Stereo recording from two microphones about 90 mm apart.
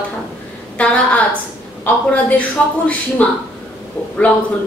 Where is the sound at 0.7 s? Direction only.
15° left (ahead or behind).